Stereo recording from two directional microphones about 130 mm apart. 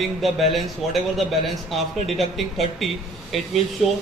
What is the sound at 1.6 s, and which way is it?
Speech, centre (ahead or behind).